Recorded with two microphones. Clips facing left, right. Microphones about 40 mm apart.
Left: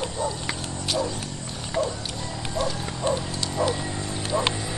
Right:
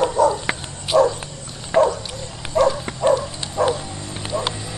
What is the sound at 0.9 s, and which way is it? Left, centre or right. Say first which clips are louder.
Bow-wow: right 13 dB; right.